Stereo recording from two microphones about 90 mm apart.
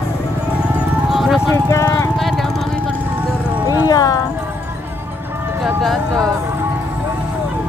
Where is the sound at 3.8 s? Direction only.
40° left (ahead or behind).